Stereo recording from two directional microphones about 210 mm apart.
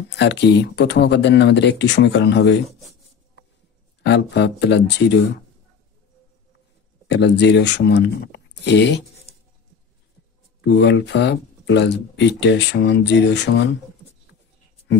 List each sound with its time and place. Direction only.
0.2 s speech: 55° left (ahead or behind)
4.0 s speech: 55° left (ahead or behind)
7.1 s speech: 55° left (ahead or behind)
10.6 s speech: 55° left (ahead or behind)